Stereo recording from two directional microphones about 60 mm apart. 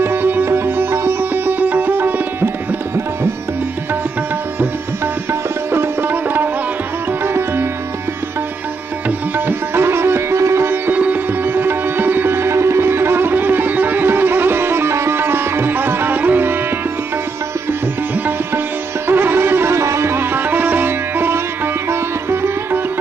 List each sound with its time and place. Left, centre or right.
0.0 s music: right
5.7 s music: right
9.5 s sitar: right
19.0 s music: right
22.3 s sitar: right